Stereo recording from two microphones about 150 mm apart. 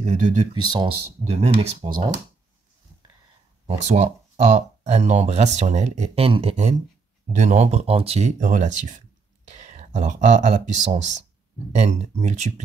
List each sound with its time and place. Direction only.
0.0 s speech: 50° right (ahead or behind)
0.6 s speech: 30° right (ahead or behind)
1.2 s speech: 45° right (ahead or behind)
3.6 s speech: 45° right (ahead or behind)